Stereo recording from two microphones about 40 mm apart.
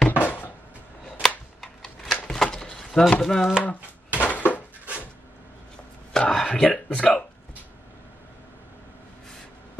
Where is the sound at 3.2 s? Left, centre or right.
Centre.